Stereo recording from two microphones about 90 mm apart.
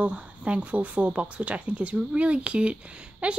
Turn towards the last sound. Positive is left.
turn(degrees=-10)  # may be behind; listen again after turning